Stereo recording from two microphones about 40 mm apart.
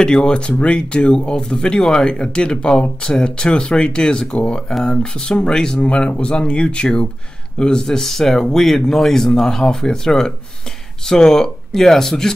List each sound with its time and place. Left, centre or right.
0.0 s speech: centre
8.0 s speech: centre